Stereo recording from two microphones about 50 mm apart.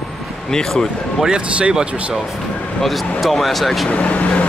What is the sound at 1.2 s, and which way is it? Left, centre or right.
Speech, centre.